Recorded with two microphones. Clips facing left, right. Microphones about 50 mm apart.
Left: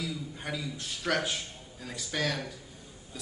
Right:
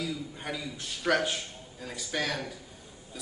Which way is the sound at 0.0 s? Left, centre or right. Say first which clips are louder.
Right 1 dB; centre.